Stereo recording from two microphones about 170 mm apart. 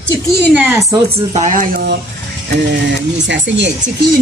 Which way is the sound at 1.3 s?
45° right (ahead or behind).